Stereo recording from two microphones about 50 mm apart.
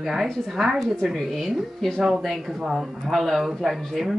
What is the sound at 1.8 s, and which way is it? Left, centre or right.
Speech, centre.